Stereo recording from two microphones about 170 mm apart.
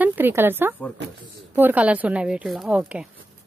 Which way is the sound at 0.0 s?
10° right (ahead or behind).